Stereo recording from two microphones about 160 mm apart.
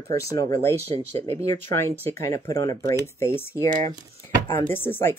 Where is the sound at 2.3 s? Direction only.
20° left (ahead or behind).